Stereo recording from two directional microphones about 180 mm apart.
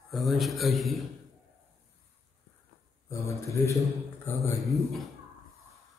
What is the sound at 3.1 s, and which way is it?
A man's voice, 15° left (ahead or behind).